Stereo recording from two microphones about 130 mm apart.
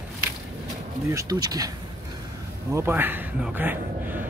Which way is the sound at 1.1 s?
30° right (ahead or behind).